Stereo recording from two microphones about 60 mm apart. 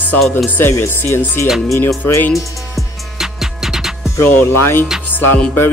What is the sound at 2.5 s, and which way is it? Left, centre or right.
Music, centre.